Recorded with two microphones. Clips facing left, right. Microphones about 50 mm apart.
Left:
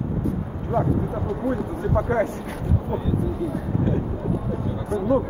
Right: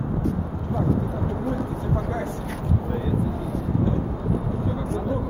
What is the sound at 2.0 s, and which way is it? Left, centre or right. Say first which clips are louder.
Speech: left 10 dB; left.